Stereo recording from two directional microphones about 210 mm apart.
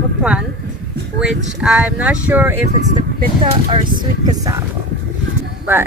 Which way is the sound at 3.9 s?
20° right (ahead or behind).